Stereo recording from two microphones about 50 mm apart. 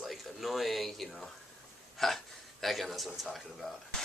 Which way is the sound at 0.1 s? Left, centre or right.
Centre.